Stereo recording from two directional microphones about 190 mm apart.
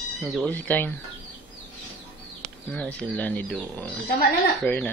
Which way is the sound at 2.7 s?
5° left (ahead or behind).